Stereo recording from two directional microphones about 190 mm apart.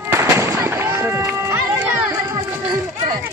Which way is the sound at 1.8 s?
10° right (ahead or behind).